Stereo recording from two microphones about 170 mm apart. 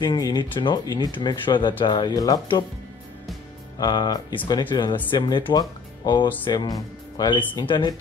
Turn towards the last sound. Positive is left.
turn(degrees=25)  # may be behind; listen again after turning